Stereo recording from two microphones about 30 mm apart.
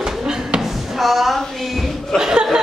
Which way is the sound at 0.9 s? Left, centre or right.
Centre.